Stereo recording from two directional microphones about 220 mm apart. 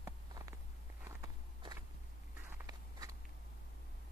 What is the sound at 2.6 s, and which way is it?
Walk, 15° right (ahead or behind).